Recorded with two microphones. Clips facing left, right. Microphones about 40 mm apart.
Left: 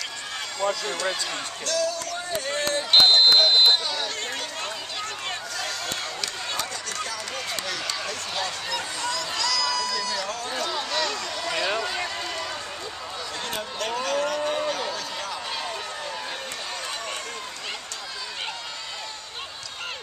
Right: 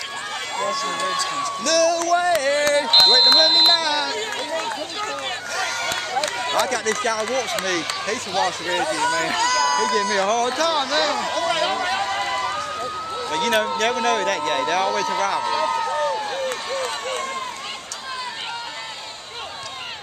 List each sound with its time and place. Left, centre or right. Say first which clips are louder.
1.4 s speech: right 9 dB; right
3.1 s speech: right 2 dB; right
3.6 s a man's voice: right 3 dB; right
5.6 s run: right 9 dB; right
6.6 s speech: right 10 dB; right
8.5 s speech: right 8 dB; right
10.2 s speech: right 12 dB; right
10.6 s a man's voice: right 7 dB; right
11.2 s a sound: right 6 dB; right
11.8 s run: right 7 dB; right
13.3 s a man's voice: right 14 dB; right
15.6 s run: right 11 dB; right